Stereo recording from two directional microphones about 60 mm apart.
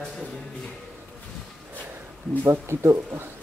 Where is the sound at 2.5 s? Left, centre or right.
Right.